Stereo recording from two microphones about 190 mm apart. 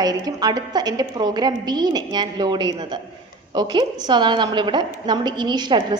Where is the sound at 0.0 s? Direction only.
20° right (ahead or behind).